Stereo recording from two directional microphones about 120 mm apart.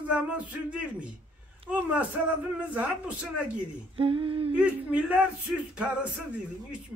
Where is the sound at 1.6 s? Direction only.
50° right (ahead or behind).